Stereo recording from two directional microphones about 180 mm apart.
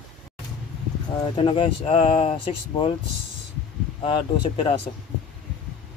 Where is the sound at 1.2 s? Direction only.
30° left (ahead or behind).